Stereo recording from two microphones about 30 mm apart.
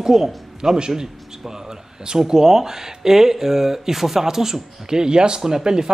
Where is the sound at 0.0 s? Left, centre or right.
Centre.